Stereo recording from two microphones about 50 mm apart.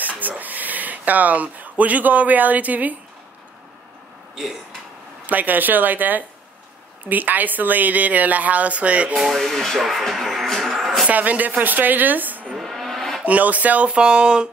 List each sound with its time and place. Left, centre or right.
0.2 s speech: right
5.2 s a woman's voice: right
9.5 s speech: centre
11.1 s a woman's voice: right
12.5 s a sound: centre
13.2 s speech: right